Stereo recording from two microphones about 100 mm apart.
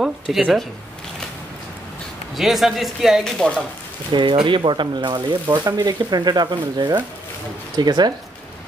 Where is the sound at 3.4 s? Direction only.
10° left (ahead or behind).